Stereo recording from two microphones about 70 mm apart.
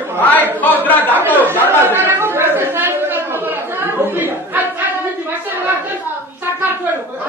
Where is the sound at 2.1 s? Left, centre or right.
Right.